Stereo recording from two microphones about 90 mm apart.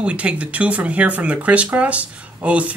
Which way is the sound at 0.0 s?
15° right (ahead or behind).